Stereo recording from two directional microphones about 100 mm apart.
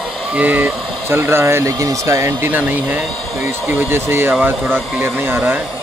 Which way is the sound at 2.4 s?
15° right (ahead or behind).